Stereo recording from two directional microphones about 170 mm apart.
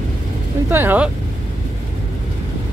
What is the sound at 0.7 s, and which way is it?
Vehicle, 10° right (ahead or behind).